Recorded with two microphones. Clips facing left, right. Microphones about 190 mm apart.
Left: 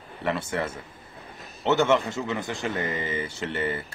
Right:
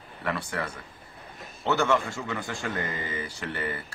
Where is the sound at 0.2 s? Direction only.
25° left (ahead or behind).